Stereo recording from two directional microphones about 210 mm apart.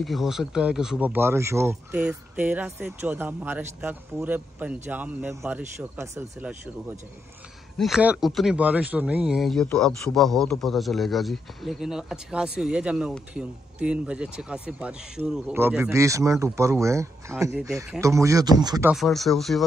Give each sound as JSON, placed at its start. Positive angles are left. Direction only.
{"t": 0.0, "sound": "speech", "side_deg": 0}
{"t": 7.7, "sound": "a man's voice", "side_deg": 0}
{"t": 18.9, "sound": "a man's voice", "side_deg": 0}